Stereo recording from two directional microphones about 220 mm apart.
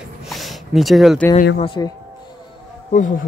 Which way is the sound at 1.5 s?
25° left (ahead or behind).